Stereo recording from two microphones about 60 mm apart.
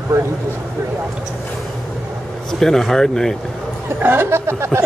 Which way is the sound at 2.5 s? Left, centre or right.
Centre.